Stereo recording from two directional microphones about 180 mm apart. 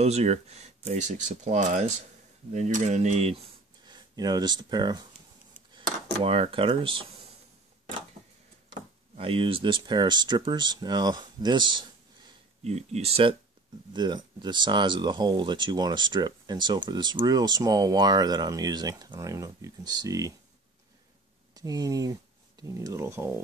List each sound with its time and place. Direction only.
0.0 s speech: 35° right (ahead or behind)
3.8 s speech: 25° right (ahead or behind)
9.1 s speech: 30° right (ahead or behind)
12.6 s speech: 35° right (ahead or behind); by 20.3 s 20° right (ahead or behind)
21.5 s speech: 20° right (ahead or behind)